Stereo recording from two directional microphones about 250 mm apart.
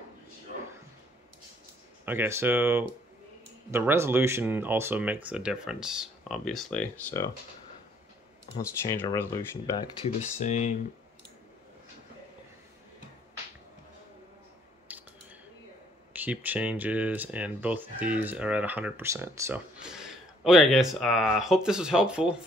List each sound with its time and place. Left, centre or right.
2.0 s speech: centre
8.5 s speech: centre
9.8 s speech: left
14.9 s clicking: centre
16.1 s speech: centre